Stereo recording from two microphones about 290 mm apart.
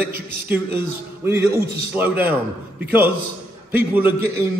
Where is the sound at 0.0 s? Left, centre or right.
Centre.